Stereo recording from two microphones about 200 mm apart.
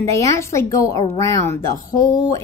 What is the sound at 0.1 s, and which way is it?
A woman's voice, 15° left (ahead or behind).